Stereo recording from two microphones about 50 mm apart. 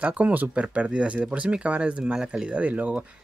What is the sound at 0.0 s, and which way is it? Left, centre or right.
Speech, right.